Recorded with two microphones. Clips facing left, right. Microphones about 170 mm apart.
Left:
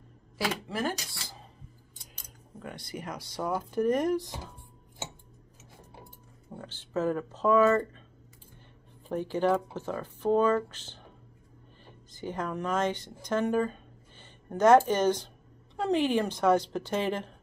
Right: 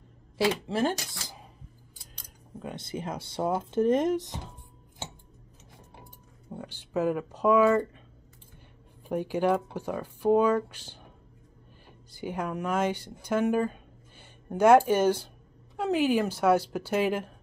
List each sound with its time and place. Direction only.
0.4 s speech: 25° right (ahead or behind)
2.6 s speech: 25° right (ahead or behind)
6.6 s speech: 15° right (ahead or behind)
9.0 s speech: 10° right (ahead or behind)
12.1 s speech: 10° right (ahead or behind)